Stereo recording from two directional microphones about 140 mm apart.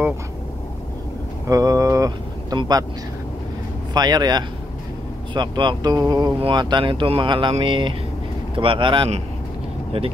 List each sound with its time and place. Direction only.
1.5 s speech: 25° right (ahead or behind)
3.9 s speech: 30° right (ahead or behind)